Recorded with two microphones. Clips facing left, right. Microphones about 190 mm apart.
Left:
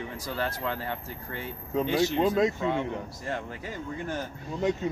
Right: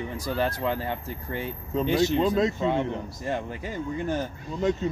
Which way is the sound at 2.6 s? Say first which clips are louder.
Right 3 dB; 20° right (ahead or behind).